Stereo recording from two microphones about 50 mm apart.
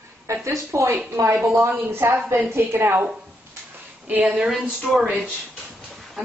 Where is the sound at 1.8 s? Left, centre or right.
Right.